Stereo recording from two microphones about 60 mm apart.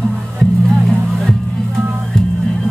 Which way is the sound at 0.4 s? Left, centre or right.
Centre.